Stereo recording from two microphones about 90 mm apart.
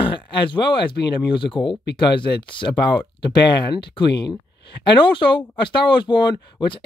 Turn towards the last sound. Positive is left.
turn(degrees=60)  # may be behind; listen again after turning